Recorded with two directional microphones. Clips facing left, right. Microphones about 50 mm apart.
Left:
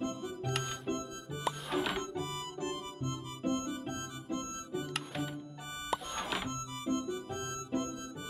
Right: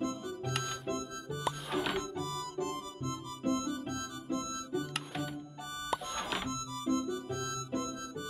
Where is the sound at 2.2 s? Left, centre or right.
Left.